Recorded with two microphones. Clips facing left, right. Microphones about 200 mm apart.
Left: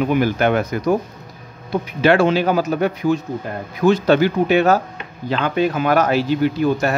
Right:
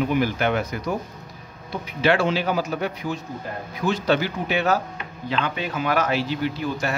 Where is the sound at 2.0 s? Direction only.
50° left (ahead or behind).